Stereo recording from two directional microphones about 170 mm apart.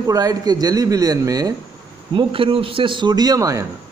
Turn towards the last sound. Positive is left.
turn(degrees=-20)  # may be behind; listen again after turning